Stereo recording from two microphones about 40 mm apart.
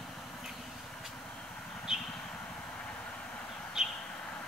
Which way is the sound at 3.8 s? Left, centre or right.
Centre.